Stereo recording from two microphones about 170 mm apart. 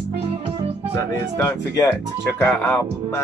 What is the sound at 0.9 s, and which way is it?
Speech, 20° left (ahead or behind).